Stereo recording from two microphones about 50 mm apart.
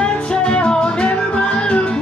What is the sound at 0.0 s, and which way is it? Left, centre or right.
Music, left.